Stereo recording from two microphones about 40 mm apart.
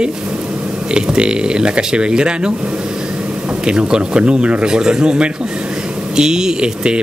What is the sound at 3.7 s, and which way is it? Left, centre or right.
Speech, right.